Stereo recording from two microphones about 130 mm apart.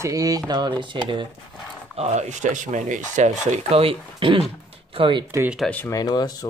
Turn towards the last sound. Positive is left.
turn(degrees=30)  # may be behind; listen again after turning